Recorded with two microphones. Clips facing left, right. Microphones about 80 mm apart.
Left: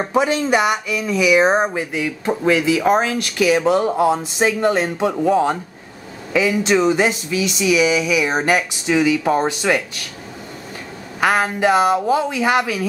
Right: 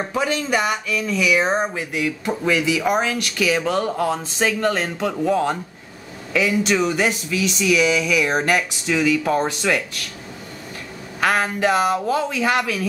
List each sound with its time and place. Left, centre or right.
0.0 s speech: left
3.1 s speech: centre
11.1 s speech: centre